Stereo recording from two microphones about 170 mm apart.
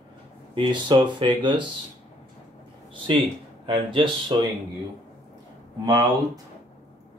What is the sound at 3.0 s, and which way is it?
Speech, 30° right (ahead or behind).